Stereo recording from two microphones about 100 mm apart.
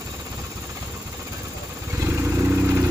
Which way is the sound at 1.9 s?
25° right (ahead or behind).